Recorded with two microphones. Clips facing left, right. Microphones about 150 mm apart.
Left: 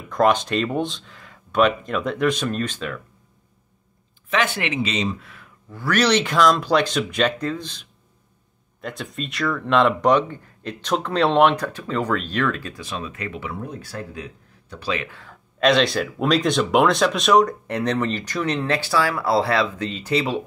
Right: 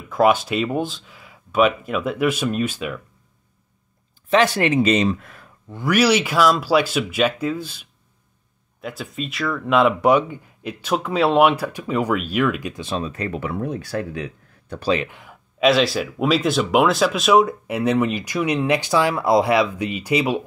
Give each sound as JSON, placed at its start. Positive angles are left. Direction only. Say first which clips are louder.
{"t": 0.1, "sound": "speech", "louder": "right 1 dB", "side_deg": -5}
{"t": 4.3, "sound": "speech", "louder": "right 6 dB", "side_deg": -35}
{"t": 5.7, "sound": "speech", "louder": "right 2 dB", "side_deg": -15}
{"t": 12.8, "sound": "speech", "louder": "right 6 dB", "side_deg": -35}
{"t": 13.4, "sound": "speech", "louder": "right 6 dB", "side_deg": -60}
{"t": 14.8, "sound": "speech", "louder": "right 6 dB", "side_deg": -35}
{"t": 15.0, "sound": "speech", "louder": "even", "side_deg": -15}
{"t": 15.6, "sound": "speech", "louder": "right 1 dB", "side_deg": -5}